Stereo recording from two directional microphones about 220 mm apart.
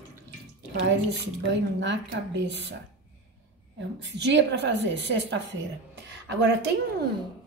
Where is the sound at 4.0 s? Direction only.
55° right (ahead or behind).